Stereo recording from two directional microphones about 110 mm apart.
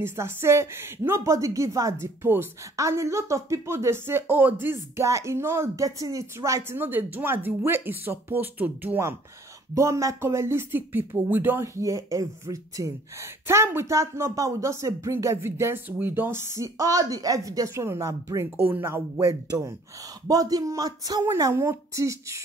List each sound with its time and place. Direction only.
0.0 s speech: 20° right (ahead or behind)
6.8 s speech: 20° right (ahead or behind)
9.8 s speech: 30° right (ahead or behind)
20.2 s a woman's voice: 35° right (ahead or behind)